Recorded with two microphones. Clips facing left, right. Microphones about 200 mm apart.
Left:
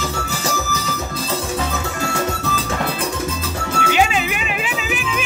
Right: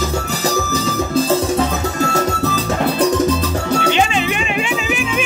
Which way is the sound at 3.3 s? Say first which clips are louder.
Right 8 dB; 40° right (ahead or behind).